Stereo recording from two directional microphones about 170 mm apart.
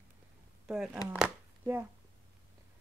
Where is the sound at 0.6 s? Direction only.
5° right (ahead or behind).